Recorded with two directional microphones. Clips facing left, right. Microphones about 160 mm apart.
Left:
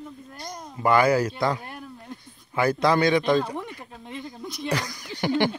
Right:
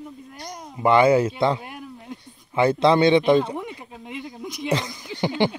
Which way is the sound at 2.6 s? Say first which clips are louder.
Right 4 dB; 25° right (ahead or behind).